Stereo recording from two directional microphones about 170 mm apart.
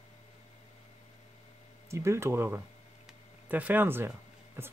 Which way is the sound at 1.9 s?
15° right (ahead or behind).